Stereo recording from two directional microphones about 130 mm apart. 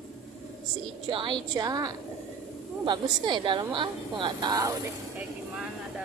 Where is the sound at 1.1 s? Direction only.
40° right (ahead or behind).